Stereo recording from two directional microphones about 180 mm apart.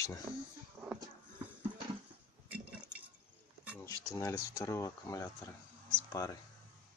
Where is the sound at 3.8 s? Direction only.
20° left (ahead or behind).